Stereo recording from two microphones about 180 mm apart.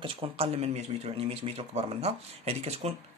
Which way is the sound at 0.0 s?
30° right (ahead or behind).